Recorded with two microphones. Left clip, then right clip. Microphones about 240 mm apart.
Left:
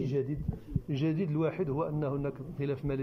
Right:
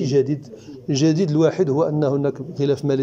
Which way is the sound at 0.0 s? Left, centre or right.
Right.